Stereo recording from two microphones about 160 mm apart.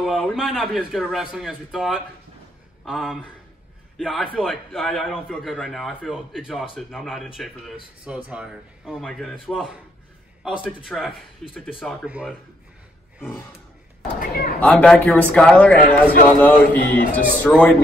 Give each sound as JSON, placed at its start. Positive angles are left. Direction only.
{"t": 0.0, "sound": "a man's voice", "side_deg": 0}
{"t": 10.9, "sound": "a man's voice", "side_deg": 0}
{"t": 14.6, "sound": "a man's voice", "side_deg": 5}